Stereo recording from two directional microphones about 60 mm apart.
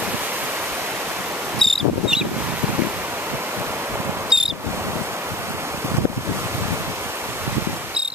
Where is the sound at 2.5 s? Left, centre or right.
Right.